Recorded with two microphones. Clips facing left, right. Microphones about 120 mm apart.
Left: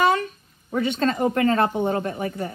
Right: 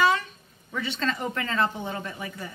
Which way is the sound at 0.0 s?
50° left (ahead or behind).